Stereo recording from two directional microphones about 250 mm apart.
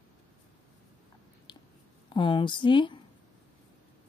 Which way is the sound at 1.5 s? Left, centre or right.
Centre.